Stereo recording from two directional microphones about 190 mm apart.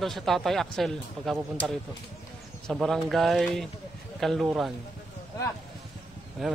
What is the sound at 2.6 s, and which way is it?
A man's voice, centre (ahead or behind).